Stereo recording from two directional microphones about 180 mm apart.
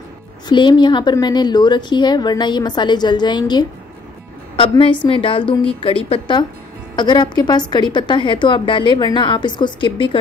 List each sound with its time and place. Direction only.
0.5 s a woman's voice: 25° left (ahead or behind)